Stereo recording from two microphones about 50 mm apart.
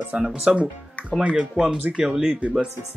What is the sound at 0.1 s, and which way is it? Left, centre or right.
Speech, right.